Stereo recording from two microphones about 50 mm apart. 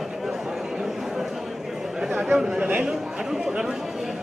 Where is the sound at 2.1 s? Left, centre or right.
Centre.